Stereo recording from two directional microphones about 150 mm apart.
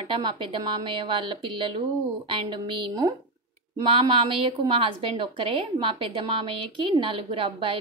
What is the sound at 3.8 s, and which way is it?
A woman's voice, 35° right (ahead or behind).